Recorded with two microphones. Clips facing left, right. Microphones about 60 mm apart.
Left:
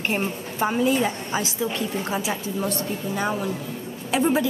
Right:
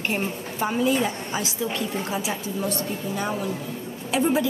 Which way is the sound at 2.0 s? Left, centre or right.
Left.